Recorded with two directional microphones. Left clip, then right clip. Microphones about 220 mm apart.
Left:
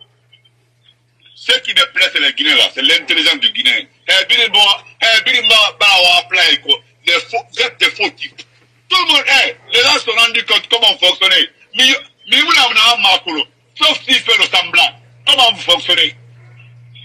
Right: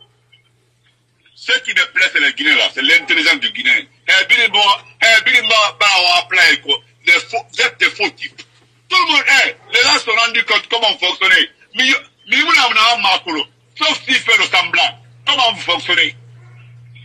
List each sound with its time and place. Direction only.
1.4 s a man's voice: 10° right (ahead or behind)